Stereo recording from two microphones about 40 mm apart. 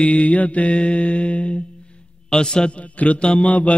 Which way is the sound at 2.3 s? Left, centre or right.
Centre.